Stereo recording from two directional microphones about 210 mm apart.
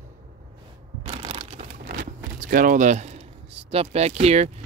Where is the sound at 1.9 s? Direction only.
45° right (ahead or behind).